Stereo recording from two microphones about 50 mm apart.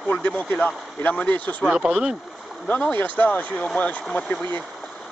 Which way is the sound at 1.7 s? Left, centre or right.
Centre.